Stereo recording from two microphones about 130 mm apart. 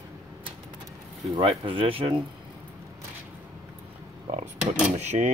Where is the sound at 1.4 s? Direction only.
45° right (ahead or behind).